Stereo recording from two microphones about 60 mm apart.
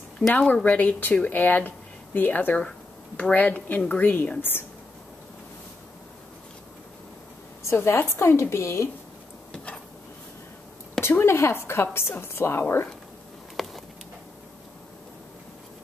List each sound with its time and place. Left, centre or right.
0.3 s a woman's voice: left
7.6 s a woman's voice: left
11.0 s a woman's voice: left
13.6 s a sound: centre